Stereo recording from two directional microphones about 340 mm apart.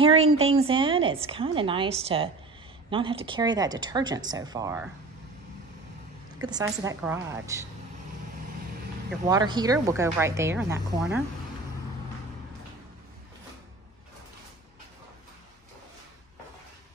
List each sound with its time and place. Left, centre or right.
0.0 s a sound: centre
0.4 s speech: centre
6.4 s speech: centre
9.2 s speech: centre